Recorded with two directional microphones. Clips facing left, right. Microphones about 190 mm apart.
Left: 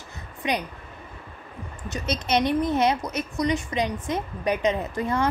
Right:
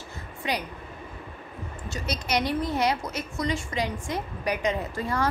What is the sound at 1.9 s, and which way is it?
A woman's voice, 20° left (ahead or behind).